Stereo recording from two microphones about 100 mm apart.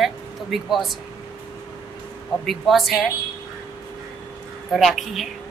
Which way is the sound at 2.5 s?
Centre (ahead or behind).